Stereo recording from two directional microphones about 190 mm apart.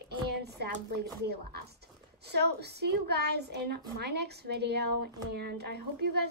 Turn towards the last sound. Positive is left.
turn(degrees=-60)  # may be behind; listen again after turning